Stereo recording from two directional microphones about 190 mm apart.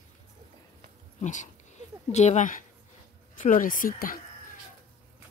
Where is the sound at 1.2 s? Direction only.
40° left (ahead or behind).